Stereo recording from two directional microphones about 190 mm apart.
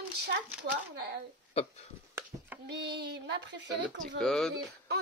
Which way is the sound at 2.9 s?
60° right (ahead or behind).